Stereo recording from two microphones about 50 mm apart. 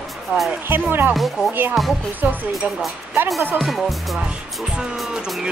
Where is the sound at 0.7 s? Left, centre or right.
Right.